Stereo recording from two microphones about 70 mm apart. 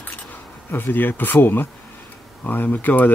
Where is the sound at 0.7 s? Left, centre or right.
Left.